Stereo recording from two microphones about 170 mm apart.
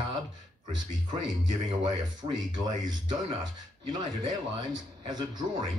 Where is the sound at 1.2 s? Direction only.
25° right (ahead or behind).